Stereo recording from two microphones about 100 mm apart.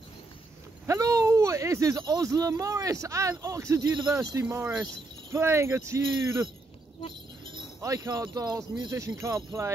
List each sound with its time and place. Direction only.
0.8 s speech: 35° right (ahead or behind)
7.8 s speech: 35° right (ahead or behind)